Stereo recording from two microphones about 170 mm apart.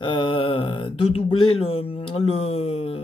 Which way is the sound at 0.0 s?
30° left (ahead or behind).